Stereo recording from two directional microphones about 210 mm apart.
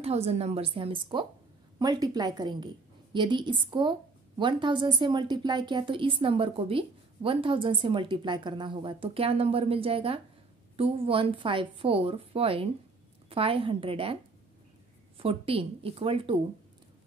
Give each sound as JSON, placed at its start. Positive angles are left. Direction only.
{"t": 0.0, "sound": "a woman's voice", "side_deg": -30}
{"t": 15.1, "sound": "a woman's voice", "side_deg": -25}